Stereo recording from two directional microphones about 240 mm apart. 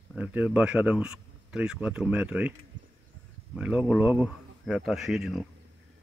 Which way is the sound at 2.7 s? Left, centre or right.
Right.